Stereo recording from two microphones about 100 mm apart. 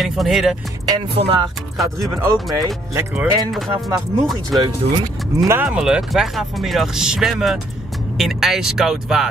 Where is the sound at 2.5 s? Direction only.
30° right (ahead or behind).